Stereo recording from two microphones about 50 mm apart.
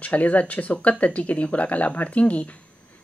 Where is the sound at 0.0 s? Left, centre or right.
Left.